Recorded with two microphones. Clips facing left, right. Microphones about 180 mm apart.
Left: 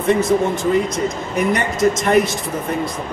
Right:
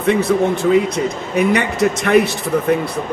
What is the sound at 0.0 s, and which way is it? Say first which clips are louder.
A man's voice: right 1 dB; 65° right (ahead or behind).